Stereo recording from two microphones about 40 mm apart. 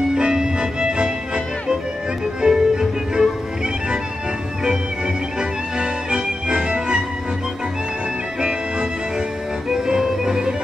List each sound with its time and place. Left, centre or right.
0.1 s music: centre
4.6 s music: right
8.4 s music: right